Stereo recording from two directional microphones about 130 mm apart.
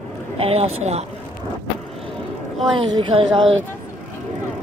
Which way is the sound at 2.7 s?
40° right (ahead or behind).